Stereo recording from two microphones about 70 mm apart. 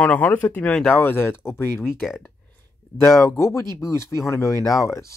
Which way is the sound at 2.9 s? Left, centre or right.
Left.